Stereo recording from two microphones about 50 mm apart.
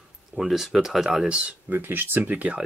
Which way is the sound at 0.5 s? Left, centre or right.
Centre.